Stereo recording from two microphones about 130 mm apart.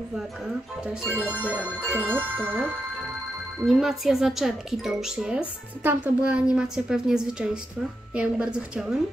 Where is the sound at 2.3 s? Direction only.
5° left (ahead or behind).